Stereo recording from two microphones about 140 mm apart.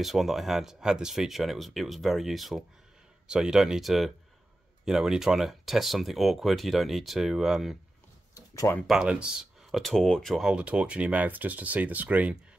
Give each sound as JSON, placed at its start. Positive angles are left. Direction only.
{"t": 0.0, "sound": "speech", "side_deg": 0}
{"t": 8.4, "sound": "a sound", "side_deg": 25}
{"t": 8.8, "sound": "speech", "side_deg": -5}